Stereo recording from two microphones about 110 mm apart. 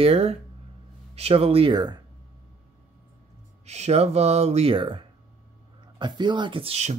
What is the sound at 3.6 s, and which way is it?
Speech, 90° right.